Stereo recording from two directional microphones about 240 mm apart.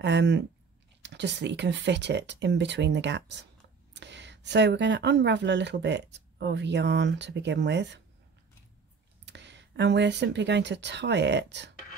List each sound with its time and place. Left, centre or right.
0.0 s speech: right
9.2 s speech: right